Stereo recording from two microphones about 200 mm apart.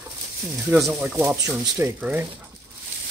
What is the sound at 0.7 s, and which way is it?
Speech, centre (ahead or behind).